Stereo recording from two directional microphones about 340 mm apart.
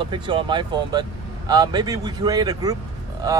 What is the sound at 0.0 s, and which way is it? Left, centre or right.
Speech, centre.